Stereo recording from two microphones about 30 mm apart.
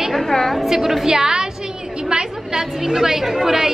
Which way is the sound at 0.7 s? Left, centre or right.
Centre.